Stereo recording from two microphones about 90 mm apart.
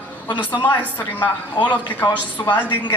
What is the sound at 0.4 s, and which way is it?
Speech, 20° left (ahead or behind).